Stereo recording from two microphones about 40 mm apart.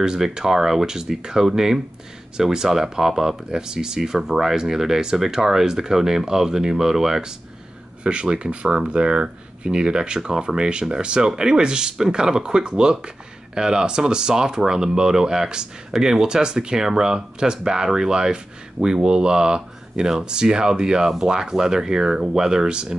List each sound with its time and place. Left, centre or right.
0.0 s speech: centre
8.0 s speech: right